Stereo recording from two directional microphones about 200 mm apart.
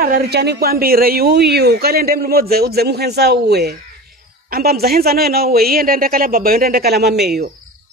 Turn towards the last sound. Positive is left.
turn(degrees=-55)  # may be behind; listen again after turning